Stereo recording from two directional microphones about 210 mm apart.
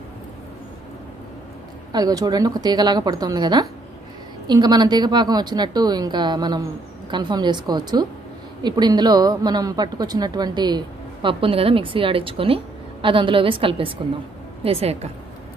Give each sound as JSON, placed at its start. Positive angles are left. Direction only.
{"t": 1.9, "sound": "a woman's voice", "side_deg": -20}